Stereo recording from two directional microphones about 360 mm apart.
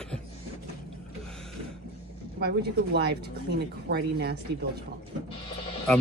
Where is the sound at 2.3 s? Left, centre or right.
Right.